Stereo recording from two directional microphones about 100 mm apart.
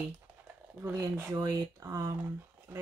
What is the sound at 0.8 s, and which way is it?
Speech, 25° right (ahead or behind).